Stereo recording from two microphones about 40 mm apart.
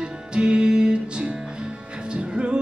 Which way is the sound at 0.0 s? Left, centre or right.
Right.